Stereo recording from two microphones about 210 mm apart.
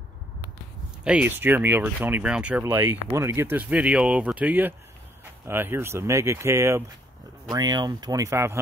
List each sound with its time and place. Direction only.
1.0 s speech: 5° right (ahead or behind)